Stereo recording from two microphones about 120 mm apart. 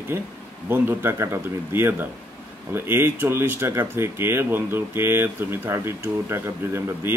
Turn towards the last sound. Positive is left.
turn(degrees=-20)  # may be behind; listen again after turning